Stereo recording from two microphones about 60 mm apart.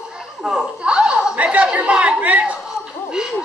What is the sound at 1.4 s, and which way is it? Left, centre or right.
Chatter, right.